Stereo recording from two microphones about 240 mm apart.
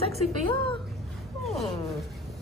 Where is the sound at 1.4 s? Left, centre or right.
Centre.